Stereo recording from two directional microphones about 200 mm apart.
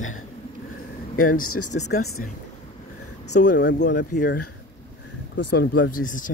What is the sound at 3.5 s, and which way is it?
Speech, 60° left (ahead or behind).